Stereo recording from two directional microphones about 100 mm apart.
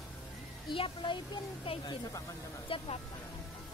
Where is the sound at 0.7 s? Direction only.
60° left (ahead or behind).